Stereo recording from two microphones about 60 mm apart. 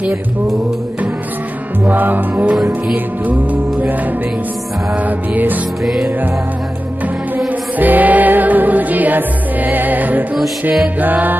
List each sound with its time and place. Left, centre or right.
1.9 s music: right
2.5 s music: centre
5.3 s music: right
7.3 s music: right